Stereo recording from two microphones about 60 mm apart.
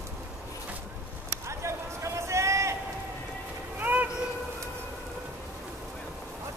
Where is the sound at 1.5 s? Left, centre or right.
Right.